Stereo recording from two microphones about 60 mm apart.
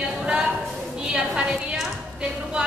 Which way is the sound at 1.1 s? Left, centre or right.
Centre.